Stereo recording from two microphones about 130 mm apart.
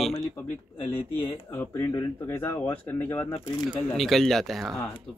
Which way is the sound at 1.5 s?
20° left (ahead or behind).